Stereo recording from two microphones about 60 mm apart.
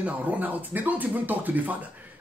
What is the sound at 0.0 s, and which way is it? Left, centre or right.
Speech, right.